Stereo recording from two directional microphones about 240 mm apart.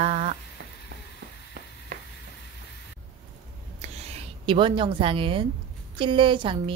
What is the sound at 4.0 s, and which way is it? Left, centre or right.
A woman's voice, right.